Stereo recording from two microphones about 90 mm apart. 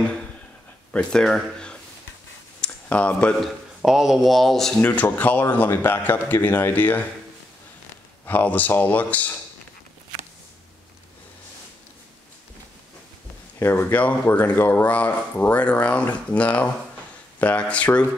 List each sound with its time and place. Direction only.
0.9 s speech: 5° left (ahead or behind)
2.6 s a sound: 15° left (ahead or behind)
3.3 s speech: 5° right (ahead or behind)
4.8 s a man's voice: 20° left (ahead or behind)
8.3 s a man's voice: 20° left (ahead or behind)
13.6 s speech: 25° left (ahead or behind)